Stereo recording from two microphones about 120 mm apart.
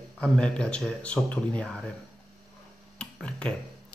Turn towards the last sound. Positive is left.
turn(degrees=10)  # may be behind; listen again after turning